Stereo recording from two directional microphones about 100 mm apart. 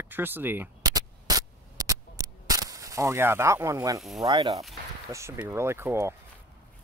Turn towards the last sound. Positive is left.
turn(degrees=-25)  # may be behind; listen again after turning